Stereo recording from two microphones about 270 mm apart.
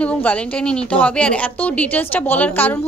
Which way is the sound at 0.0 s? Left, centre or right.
Centre.